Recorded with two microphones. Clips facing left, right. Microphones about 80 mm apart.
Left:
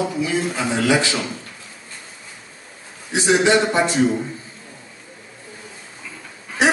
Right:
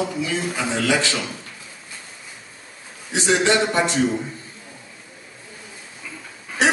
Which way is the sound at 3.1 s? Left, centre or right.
Centre.